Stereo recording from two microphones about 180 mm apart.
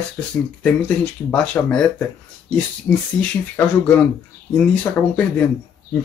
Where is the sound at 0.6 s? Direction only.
5° left (ahead or behind).